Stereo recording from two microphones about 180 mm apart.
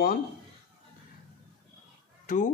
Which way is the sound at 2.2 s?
45° left (ahead or behind).